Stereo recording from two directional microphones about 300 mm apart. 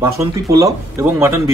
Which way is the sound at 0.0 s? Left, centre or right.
Centre.